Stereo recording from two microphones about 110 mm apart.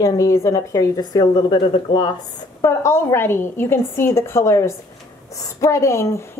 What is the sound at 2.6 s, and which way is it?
A woman's voice, 25° left (ahead or behind).